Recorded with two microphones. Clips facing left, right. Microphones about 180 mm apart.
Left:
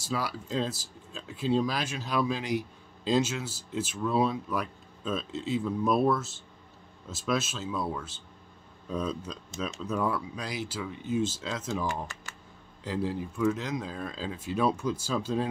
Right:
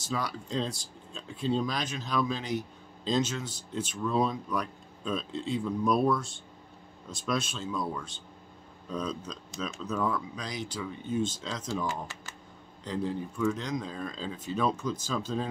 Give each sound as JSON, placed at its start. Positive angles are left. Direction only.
{"t": 0.0, "sound": "speech", "side_deg": 5}
{"t": 12.8, "sound": "speech", "side_deg": 5}